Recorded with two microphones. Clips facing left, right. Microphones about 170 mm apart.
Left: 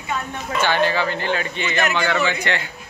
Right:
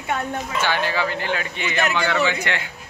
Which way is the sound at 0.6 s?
10° right (ahead or behind).